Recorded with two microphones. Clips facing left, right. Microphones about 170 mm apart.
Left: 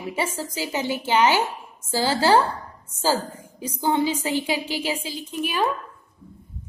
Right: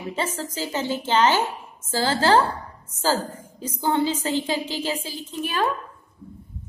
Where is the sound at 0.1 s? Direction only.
10° left (ahead or behind).